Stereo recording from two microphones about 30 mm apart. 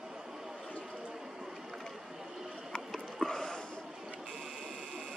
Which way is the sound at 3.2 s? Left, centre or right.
Centre.